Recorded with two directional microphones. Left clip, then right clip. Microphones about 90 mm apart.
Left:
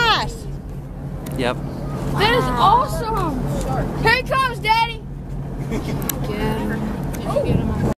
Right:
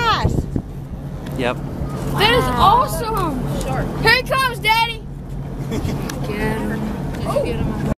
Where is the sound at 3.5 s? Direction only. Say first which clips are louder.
Right 1 dB; 25° right (ahead or behind).